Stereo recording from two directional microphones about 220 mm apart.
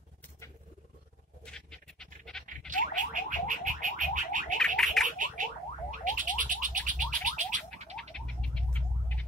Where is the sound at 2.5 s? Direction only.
35° right (ahead or behind).